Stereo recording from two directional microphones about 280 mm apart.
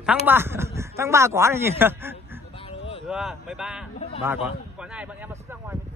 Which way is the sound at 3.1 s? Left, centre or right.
Centre.